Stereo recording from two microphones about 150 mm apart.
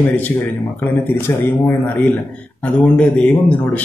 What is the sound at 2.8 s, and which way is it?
Speech, 5° left (ahead or behind).